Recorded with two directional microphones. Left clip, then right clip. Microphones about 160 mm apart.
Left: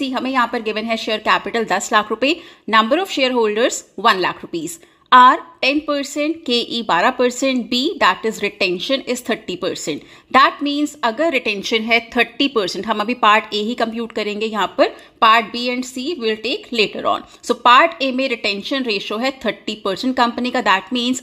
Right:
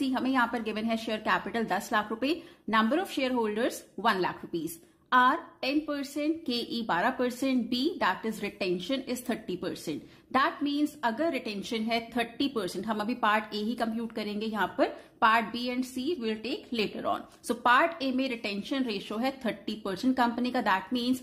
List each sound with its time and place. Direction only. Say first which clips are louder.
0.1 s a woman's voice: left 10 dB; 25° left (ahead or behind)